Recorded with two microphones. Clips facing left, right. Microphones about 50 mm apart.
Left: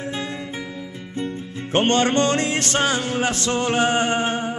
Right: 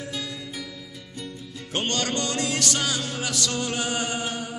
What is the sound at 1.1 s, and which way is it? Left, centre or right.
Music, left.